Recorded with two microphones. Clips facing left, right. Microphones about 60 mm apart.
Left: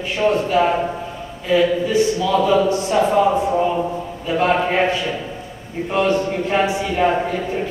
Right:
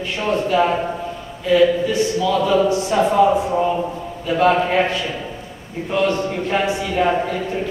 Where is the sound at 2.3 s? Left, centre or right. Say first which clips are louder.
Left 2 dB; centre.